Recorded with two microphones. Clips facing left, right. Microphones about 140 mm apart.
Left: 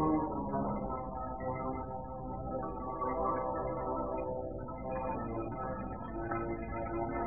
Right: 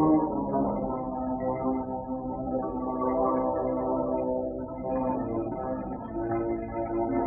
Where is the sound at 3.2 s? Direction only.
40° right (ahead or behind).